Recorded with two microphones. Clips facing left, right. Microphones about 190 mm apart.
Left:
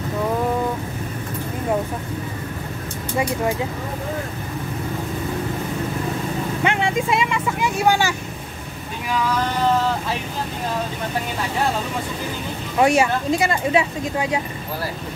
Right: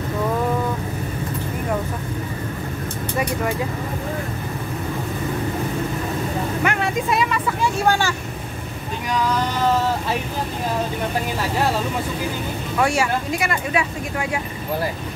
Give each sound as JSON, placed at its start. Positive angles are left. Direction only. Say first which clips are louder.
{"t": 6.6, "sound": "vehicle", "louder": "left 3 dB", "side_deg": 25}
{"t": 12.7, "sound": "speech", "louder": "left 3 dB", "side_deg": 20}